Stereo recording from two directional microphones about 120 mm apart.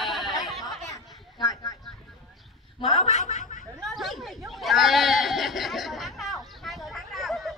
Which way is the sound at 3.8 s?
Centre (ahead or behind).